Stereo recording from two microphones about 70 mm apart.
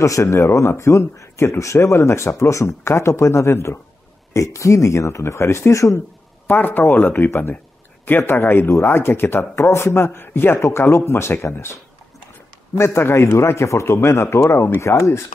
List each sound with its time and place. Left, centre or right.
0.0 s speech: left
6.4 s speech: left
12.7 s speech: left